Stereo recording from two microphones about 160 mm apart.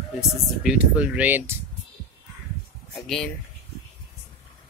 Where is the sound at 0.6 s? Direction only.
5° right (ahead or behind).